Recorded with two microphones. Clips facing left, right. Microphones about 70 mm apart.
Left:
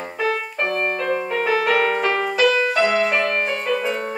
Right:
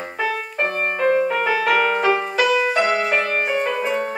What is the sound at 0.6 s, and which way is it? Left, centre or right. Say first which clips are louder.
Music: right 1 dB; centre.